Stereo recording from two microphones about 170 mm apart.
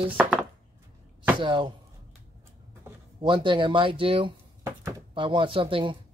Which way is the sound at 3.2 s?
30° right (ahead or behind).